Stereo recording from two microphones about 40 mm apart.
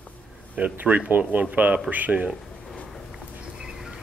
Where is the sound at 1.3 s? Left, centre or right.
Right.